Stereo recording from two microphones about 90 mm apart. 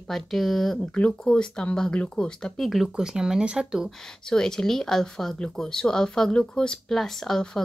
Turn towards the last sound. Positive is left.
turn(degrees=5)  # may be behind; listen again after turning